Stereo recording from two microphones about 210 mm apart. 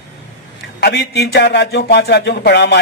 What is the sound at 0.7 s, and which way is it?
A man's voice, 55° left (ahead or behind).